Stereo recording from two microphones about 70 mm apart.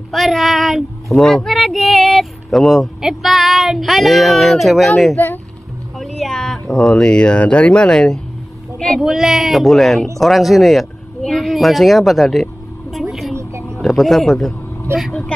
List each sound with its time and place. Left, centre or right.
0.1 s speech: centre
5.1 s speech: left
5.9 s speech: centre
8.7 s a sound: centre
9.0 s speech: centre
12.9 s vehicle: centre
13.4 s vehicle: right
13.7 s speech: centre